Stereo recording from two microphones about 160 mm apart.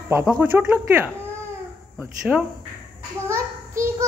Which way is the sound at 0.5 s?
5° right (ahead or behind).